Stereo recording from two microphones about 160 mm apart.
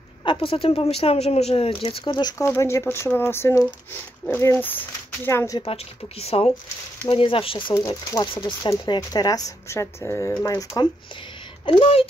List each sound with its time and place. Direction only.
0.2 s speech: 35° left (ahead or behind)
2.3 s speech: 20° left (ahead or behind)
5.7 s speech: 40° left (ahead or behind)
7.7 s speech: 20° left (ahead or behind)
11.6 s speech: 35° left (ahead or behind)